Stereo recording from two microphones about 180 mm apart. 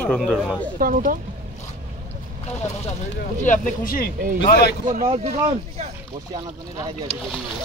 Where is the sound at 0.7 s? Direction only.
50° right (ahead or behind).